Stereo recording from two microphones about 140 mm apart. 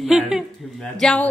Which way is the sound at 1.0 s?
10° left (ahead or behind).